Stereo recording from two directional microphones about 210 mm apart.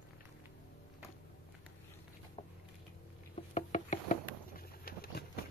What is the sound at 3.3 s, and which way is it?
Patter, 35° left (ahead or behind).